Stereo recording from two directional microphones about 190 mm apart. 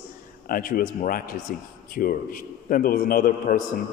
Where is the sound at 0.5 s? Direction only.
50° left (ahead or behind).